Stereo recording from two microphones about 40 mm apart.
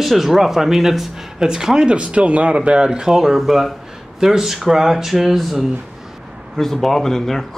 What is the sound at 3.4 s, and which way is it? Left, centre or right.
Speech, centre.